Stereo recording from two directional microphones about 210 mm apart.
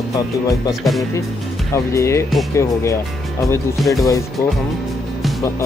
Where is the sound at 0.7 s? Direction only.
Centre (ahead or behind).